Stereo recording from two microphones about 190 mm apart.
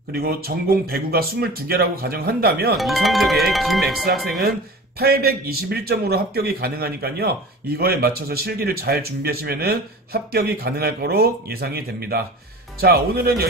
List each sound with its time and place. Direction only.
0.1 s speech: 55° right (ahead or behind)
2.8 s speech: centre (ahead or behind)
4.4 s a man's voice: 55° right (ahead or behind)